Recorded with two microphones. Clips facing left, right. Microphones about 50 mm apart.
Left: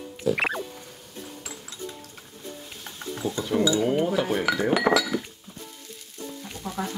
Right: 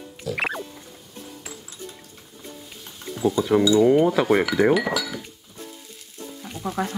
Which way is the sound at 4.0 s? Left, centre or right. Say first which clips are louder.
Right 6 dB; right.